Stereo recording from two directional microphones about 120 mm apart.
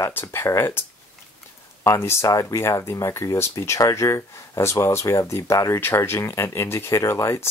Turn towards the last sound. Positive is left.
turn(degrees=25)  # may be behind; listen again after turning